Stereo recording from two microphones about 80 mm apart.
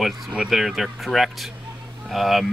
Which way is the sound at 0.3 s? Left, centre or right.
Centre.